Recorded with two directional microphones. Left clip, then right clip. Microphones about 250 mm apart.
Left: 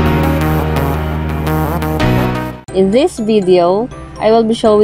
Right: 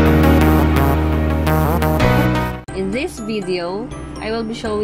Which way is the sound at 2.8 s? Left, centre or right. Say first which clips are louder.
Left 13 dB; left.